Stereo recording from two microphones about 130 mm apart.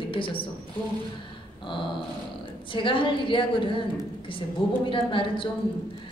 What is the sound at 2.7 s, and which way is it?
A woman's voice, 40° left (ahead or behind).